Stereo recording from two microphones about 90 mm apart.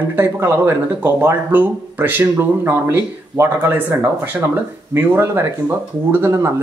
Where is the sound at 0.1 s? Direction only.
30° right (ahead or behind).